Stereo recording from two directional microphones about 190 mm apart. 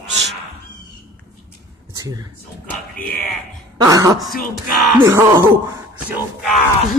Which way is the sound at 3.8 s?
20° right (ahead or behind).